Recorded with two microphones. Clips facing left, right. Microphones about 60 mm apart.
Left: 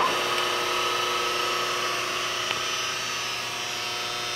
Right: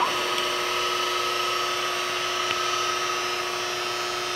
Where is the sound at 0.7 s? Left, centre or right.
Centre.